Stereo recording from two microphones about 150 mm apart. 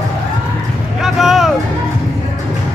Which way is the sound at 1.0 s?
Centre (ahead or behind).